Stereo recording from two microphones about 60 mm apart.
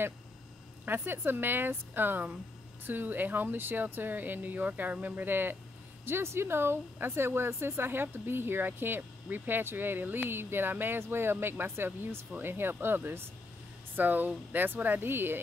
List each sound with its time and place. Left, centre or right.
0.8 s speech: right
5.2 s speech: right